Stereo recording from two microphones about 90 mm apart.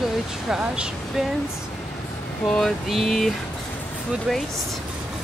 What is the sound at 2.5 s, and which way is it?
Speech, centre (ahead or behind).